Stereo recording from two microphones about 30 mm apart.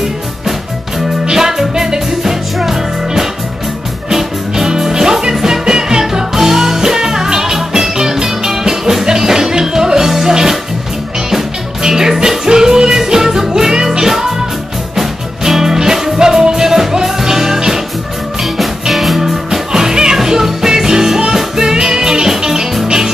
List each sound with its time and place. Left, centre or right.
1.3 s music: centre
4.1 s music: centre
18.4 s music: centre